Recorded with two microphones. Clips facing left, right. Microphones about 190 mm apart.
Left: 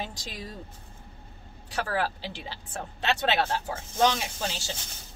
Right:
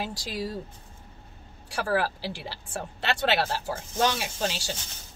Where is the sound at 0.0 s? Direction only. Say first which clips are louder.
Right 5 dB; 10° right (ahead or behind).